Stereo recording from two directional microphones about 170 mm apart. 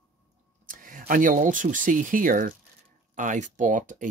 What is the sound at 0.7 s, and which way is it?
Speech, 55° right (ahead or behind).